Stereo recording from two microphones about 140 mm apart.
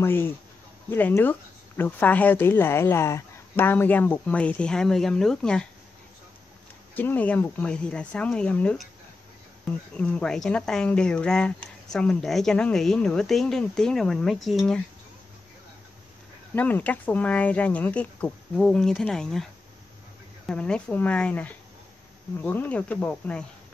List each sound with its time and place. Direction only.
0.0 s a woman's voice: 15° left (ahead or behind)
7.0 s a woman's voice: 10° left (ahead or behind)
9.9 s speech: 10° left (ahead or behind)
16.5 s a woman's voice: 10° left (ahead or behind)